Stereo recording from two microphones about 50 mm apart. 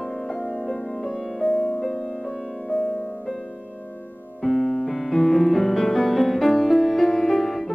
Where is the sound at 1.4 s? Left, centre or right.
Centre.